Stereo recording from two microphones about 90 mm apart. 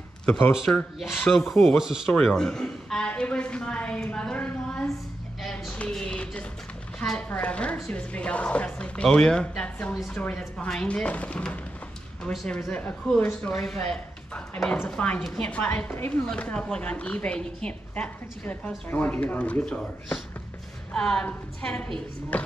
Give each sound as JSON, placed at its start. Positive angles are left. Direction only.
{"t": 0.9, "sound": "speech", "side_deg": 0}
{"t": 2.2, "sound": "a woman's voice", "side_deg": 5}
{"t": 5.4, "sound": "a sound", "side_deg": 5}
{"t": 7.0, "sound": "a woman's voice", "side_deg": 10}